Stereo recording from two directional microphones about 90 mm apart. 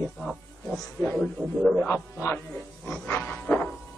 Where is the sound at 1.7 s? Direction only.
30° left (ahead or behind).